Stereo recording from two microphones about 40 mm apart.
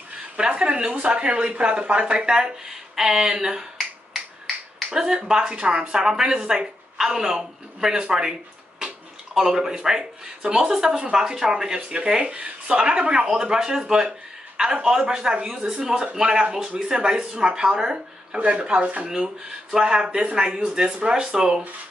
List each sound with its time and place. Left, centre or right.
0.4 s speech: right
2.6 s a sound: centre
4.9 s speech: centre
18.4 s speech: right
19.0 s speech: centre
20.0 s speech: right